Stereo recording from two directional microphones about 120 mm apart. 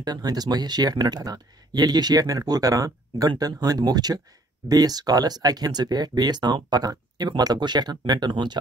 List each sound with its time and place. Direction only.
0.0 s speech: 35° right (ahead or behind)